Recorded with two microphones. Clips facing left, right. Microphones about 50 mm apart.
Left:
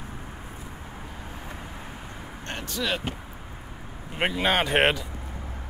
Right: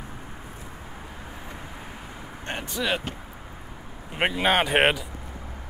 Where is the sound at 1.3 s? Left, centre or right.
Centre.